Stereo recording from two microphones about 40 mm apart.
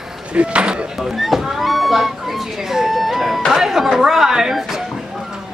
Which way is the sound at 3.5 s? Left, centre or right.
Centre.